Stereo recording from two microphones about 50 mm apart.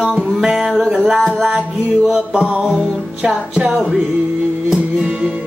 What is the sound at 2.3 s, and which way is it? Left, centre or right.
Music, right.